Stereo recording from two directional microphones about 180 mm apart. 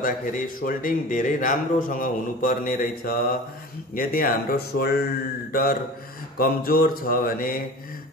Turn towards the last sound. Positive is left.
turn(degrees=55)  # may be behind; listen again after turning